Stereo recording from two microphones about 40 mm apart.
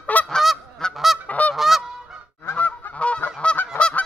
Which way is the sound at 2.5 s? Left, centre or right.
Left.